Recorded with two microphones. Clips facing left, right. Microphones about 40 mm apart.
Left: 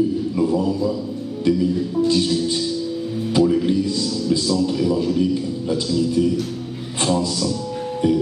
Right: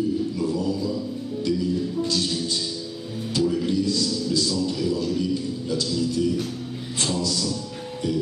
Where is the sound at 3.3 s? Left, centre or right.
Left.